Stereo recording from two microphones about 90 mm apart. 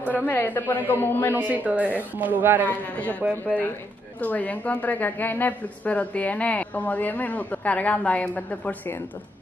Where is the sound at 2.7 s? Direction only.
20° left (ahead or behind).